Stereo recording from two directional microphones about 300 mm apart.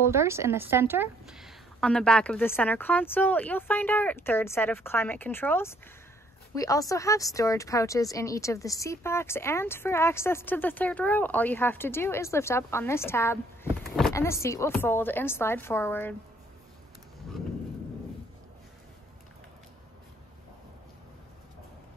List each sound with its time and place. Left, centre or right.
0.0 s a woman's voice: centre